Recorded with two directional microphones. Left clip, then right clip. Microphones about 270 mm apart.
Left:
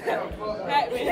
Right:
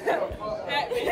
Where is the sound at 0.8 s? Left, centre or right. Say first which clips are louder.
Left 6 dB; centre.